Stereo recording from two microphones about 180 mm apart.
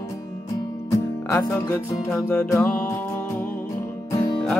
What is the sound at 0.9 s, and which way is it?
Music, 15° left (ahead or behind).